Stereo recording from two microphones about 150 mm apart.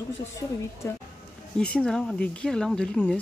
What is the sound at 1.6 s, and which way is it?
Speech, 5° left (ahead or behind).